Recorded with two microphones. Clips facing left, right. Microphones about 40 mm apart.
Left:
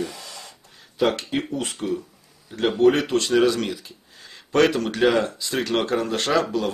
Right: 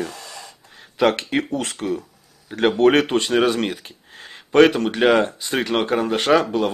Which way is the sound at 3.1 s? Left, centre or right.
Right.